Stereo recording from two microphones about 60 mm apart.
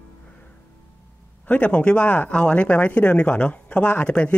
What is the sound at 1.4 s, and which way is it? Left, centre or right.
Speech, left.